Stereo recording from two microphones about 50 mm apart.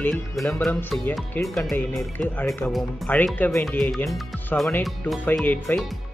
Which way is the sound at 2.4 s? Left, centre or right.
Left.